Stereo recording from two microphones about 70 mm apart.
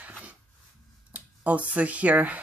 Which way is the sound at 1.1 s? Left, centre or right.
Centre.